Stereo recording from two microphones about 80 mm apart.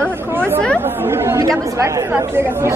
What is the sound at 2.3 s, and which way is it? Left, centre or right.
Speech, right.